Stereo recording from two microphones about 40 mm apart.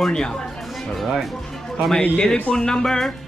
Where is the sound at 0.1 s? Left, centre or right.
Centre.